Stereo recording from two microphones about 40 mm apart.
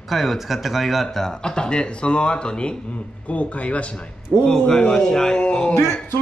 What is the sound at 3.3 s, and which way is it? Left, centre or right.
Speech, left.